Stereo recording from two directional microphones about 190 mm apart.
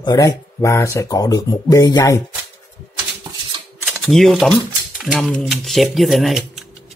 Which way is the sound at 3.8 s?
5° left (ahead or behind).